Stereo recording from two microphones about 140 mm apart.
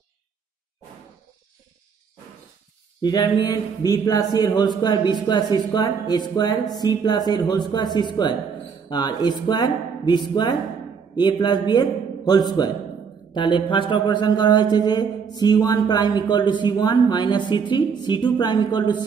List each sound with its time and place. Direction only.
3.0 s a man's voice: 30° left (ahead or behind)